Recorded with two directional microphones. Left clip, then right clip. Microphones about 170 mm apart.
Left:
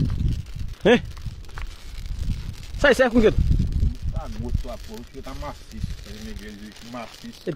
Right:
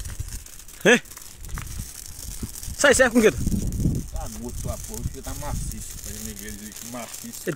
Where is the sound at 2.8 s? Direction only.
Centre (ahead or behind).